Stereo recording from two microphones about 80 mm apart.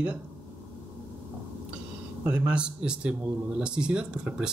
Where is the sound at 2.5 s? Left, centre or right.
Centre.